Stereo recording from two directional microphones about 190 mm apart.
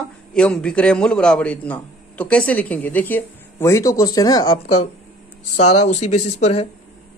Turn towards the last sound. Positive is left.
turn(degrees=35)  # may be behind; listen again after turning